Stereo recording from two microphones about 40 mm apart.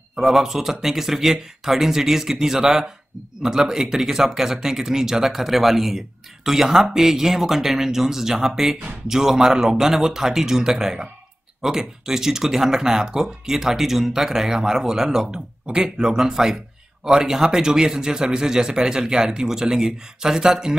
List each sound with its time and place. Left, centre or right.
0.1 s speech: centre